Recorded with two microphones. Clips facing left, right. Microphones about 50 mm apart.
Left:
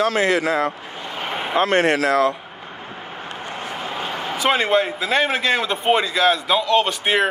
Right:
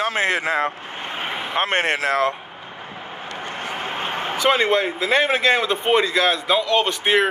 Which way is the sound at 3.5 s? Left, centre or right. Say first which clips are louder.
Right 1 dB; right.